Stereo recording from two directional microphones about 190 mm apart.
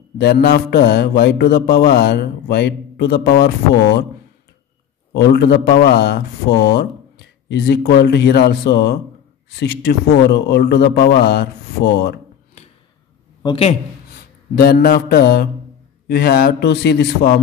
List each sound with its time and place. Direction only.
0.2 s mantra: 55° left (ahead or behind)
5.1 s mantra: 60° left (ahead or behind)
13.4 s a man's voice: 30° left (ahead or behind)
14.5 s mantra: 55° left (ahead or behind)